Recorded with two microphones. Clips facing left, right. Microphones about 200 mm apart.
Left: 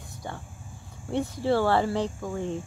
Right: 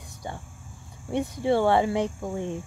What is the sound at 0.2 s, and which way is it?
Speech, 15° right (ahead or behind).